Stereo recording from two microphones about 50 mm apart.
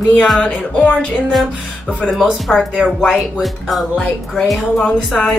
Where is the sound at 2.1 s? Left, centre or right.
Centre.